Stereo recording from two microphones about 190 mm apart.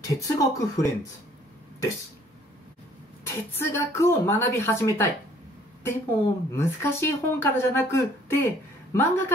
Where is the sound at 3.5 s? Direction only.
15° left (ahead or behind).